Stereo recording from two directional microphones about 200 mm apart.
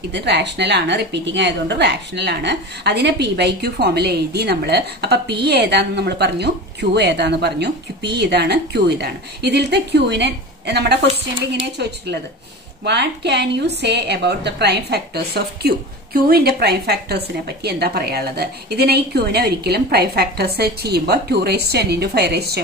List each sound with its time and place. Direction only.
0.1 s a woman's voice: 60° right (ahead or behind)
12.8 s a woman's voice: 55° right (ahead or behind)